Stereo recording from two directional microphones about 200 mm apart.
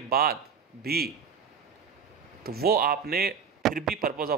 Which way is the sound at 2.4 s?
50° right (ahead or behind).